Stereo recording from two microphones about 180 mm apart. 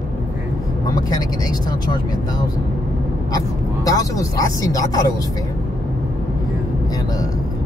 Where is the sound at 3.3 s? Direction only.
20° left (ahead or behind).